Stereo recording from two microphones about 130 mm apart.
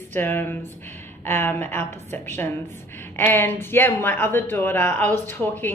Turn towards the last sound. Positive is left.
turn(degrees=10)  # may be behind; listen again after turning